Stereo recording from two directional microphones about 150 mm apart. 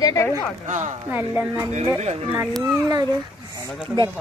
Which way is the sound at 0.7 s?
55° right (ahead or behind).